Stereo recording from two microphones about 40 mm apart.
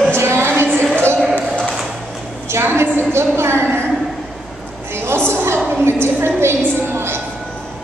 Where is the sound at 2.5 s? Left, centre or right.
Right.